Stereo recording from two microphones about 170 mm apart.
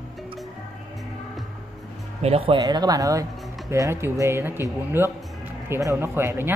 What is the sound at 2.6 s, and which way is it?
Speech, 20° right (ahead or behind).